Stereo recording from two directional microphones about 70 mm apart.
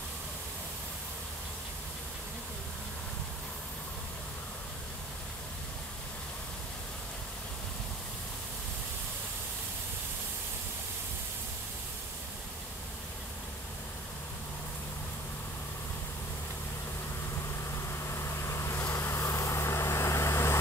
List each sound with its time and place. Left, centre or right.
18.0 s vehicle: left